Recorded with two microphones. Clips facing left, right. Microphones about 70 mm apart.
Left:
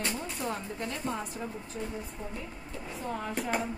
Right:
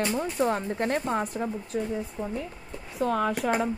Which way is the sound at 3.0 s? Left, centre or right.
Right.